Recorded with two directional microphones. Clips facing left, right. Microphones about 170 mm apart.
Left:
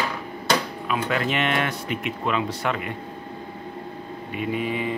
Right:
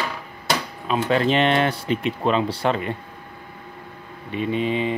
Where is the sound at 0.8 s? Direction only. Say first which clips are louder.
Right 5 dB; 30° right (ahead or behind).